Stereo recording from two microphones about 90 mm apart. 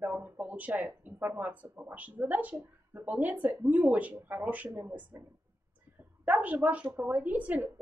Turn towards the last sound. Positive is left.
turn(degrees=-15)  # may be behind; listen again after turning